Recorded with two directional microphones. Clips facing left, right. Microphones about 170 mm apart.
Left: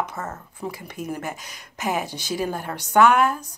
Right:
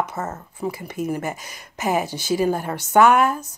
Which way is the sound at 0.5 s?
5° right (ahead or behind).